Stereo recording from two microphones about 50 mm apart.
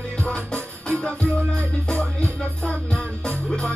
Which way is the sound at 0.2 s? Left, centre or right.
Centre.